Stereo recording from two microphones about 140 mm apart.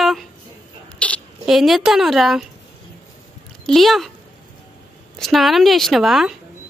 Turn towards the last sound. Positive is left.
turn(degrees=0)  # may be behind; listen again after turning